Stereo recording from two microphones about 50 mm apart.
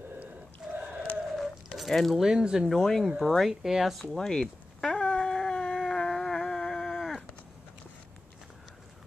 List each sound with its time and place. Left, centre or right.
0.6 s a sound: centre
1.3 s a sound: centre
1.9 s speech: centre
2.2 s speech: centre
2.7 s speech: centre
4.3 s dog: centre